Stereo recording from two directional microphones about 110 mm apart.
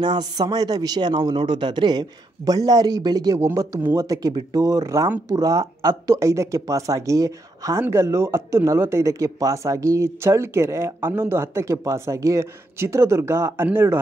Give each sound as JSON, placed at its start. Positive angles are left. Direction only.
{"t": 0.0, "sound": "a man's voice", "side_deg": -40}
{"t": 3.3, "sound": "a man's voice", "side_deg": -25}